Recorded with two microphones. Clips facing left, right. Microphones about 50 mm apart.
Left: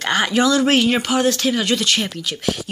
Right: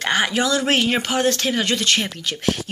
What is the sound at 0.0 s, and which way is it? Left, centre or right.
Speech, right.